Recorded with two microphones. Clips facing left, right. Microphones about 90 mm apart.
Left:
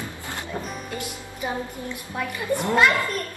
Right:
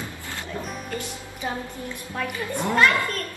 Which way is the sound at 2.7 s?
15° left (ahead or behind).